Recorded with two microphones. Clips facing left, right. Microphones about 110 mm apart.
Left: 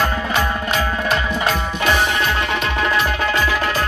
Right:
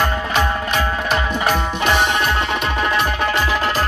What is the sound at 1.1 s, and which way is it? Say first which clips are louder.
Music: right 3 dB; 20° right (ahead or behind).